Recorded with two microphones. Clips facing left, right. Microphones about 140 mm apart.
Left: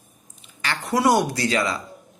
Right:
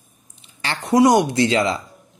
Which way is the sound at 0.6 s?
20° right (ahead or behind).